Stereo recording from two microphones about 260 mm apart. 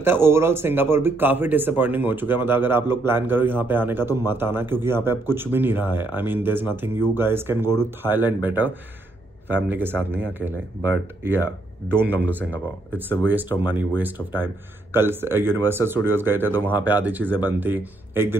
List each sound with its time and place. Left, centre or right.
0.0 s a man's voice: centre
11.9 s a man's voice: centre